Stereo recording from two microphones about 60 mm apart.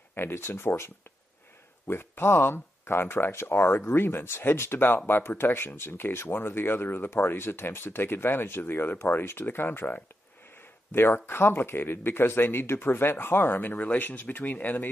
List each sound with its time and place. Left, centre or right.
0.1 s speech: left